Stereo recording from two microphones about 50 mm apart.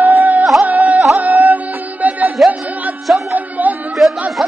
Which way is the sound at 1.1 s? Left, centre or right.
Right.